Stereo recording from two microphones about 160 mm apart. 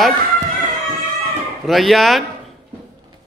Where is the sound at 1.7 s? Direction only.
Centre (ahead or behind).